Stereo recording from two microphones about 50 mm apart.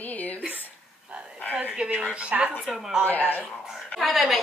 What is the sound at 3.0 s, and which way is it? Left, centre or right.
Speech, left.